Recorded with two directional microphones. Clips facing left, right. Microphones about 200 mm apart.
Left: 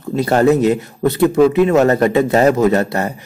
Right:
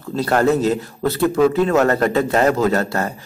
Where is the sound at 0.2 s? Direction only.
15° left (ahead or behind).